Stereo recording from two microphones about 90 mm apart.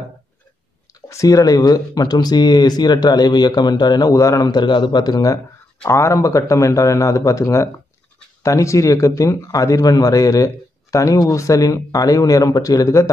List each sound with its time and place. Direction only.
1.0 s speech: 40° left (ahead or behind)
5.9 s speech: 35° left (ahead or behind)